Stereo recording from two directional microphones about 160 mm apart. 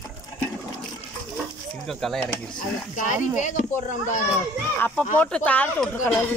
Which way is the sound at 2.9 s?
50° left (ahead or behind).